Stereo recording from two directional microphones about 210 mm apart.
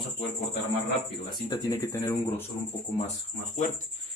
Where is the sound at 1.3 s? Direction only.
20° left (ahead or behind).